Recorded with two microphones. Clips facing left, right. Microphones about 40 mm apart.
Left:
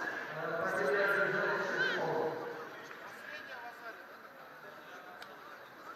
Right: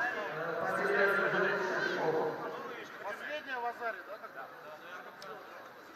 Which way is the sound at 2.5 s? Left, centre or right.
Right.